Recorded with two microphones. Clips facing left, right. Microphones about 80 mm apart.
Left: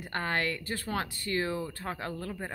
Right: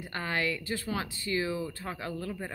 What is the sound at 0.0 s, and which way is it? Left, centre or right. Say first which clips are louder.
Speech: left 1 dB; left.